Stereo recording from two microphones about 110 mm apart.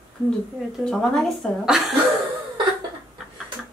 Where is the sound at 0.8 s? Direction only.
5° left (ahead or behind).